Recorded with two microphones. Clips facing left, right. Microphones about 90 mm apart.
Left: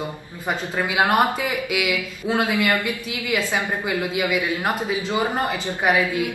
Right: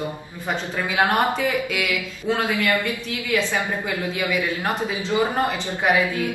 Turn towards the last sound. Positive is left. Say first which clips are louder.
# even
turn(degrees=20)  # may be behind; listen again after turning